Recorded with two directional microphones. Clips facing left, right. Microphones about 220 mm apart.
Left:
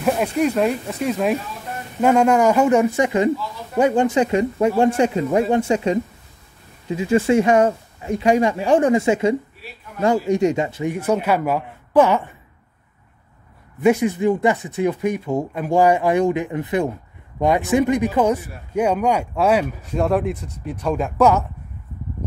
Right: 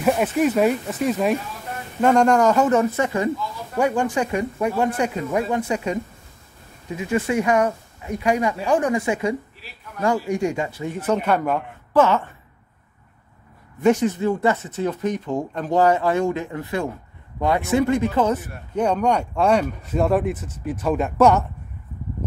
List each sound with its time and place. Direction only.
0.0 s speech: centre (ahead or behind); by 5.9 s 25° left (ahead or behind)
7.0 s speech: 25° left (ahead or behind)
13.7 s speech: 10° left (ahead or behind)